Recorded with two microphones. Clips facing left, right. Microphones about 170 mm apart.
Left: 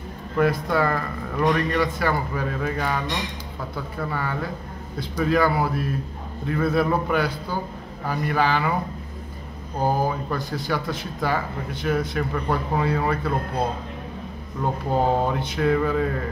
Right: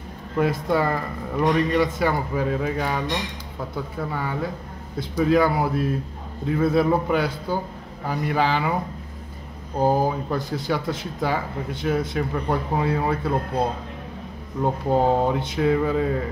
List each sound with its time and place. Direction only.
0.4 s speech: 25° right (ahead or behind)
9.8 s speech: 25° right (ahead or behind)
14.6 s speech: 25° right (ahead or behind)